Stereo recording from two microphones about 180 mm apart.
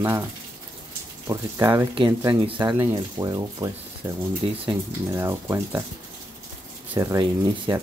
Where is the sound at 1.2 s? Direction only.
15° right (ahead or behind).